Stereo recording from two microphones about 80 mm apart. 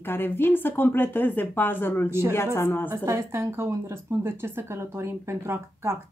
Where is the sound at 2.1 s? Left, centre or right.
Right.